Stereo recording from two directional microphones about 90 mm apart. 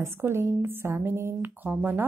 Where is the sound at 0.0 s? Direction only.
25° right (ahead or behind).